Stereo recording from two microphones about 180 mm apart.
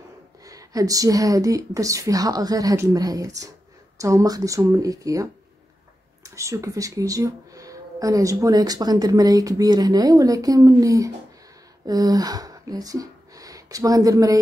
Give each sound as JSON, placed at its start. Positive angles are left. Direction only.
{"t": 0.4, "sound": "speech", "side_deg": -20}